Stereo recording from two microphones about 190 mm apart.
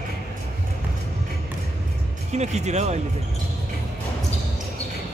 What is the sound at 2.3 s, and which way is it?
Speech, 35° right (ahead or behind).